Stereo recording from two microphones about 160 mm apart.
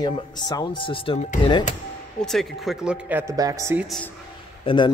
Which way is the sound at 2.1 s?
Centre (ahead or behind).